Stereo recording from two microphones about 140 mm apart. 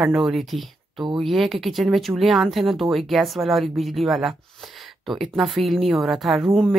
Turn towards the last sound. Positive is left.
turn(degrees=0)  # may be behind; listen again after turning